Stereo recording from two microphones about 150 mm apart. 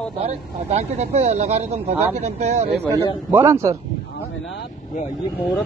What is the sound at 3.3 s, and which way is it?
Speech, 15° right (ahead or behind).